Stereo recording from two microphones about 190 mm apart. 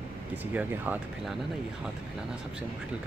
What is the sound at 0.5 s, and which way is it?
Speech, 10° right (ahead or behind).